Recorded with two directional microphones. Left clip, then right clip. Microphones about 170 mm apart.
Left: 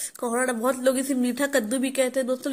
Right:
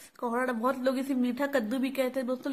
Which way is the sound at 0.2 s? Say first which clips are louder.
Left 4 dB; 20° left (ahead or behind).